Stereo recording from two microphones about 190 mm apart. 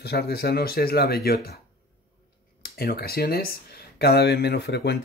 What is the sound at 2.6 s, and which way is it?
Speech, 55° left (ahead or behind).